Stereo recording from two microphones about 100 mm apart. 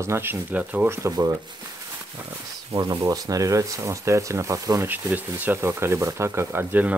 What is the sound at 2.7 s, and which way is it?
Speech, 35° right (ahead or behind).